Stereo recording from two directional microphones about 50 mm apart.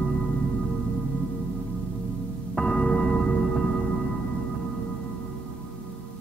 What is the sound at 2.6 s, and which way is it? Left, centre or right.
Music, left.